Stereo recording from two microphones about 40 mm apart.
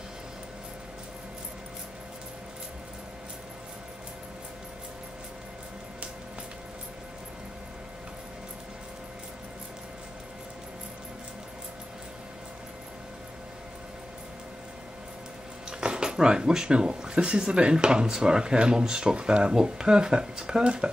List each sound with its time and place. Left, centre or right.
15.8 s speech: right